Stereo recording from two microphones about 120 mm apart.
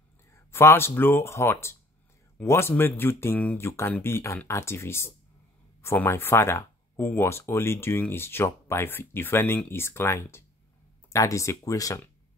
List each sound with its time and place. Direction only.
0.5 s speech: 20° left (ahead or behind)